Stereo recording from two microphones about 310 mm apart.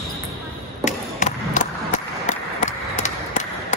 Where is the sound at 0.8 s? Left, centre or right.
Left.